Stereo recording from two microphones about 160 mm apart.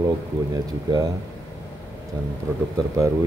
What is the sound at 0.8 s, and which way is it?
Speech, 25° right (ahead or behind).